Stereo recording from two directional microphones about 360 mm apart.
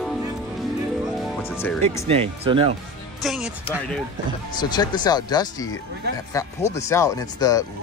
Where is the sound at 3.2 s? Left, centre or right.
Centre.